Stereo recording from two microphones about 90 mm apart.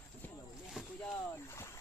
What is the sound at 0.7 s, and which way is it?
Speech, 5° left (ahead or behind).